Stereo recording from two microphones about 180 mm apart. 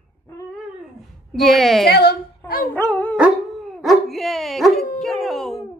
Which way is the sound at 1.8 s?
60° left (ahead or behind).